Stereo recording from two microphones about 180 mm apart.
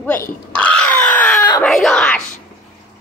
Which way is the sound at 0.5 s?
5° left (ahead or behind).